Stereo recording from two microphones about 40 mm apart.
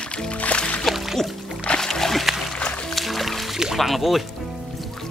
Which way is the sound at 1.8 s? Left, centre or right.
Centre.